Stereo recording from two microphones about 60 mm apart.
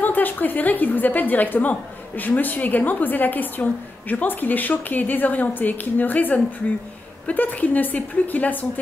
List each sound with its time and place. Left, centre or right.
0.0 s a woman's voice: left